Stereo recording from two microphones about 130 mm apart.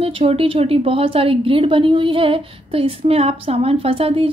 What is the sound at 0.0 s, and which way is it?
A woman's voice, 50° right (ahead or behind).